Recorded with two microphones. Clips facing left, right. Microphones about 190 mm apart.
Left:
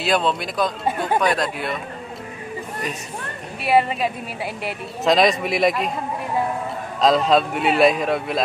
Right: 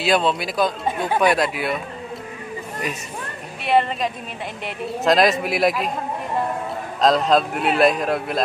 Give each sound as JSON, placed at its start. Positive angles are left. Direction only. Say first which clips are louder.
{"t": 0.0, "sound": "a man's voice", "louder": "right 1 dB", "side_deg": 0}
{"t": 3.6, "sound": "a man's voice", "louder": "left 1 dB", "side_deg": 5}
{"t": 7.0, "sound": "a man's voice", "louder": "even", "side_deg": 0}